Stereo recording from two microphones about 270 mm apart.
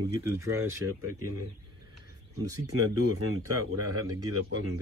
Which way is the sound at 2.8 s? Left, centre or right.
Right.